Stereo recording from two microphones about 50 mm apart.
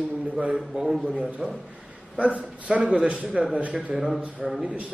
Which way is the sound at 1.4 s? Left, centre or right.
Right.